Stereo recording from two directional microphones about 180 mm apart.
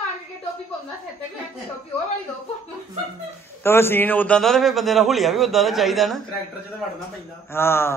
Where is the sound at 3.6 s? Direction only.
15° left (ahead or behind).